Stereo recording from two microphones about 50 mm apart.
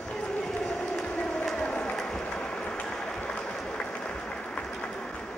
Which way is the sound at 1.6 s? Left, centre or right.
Left.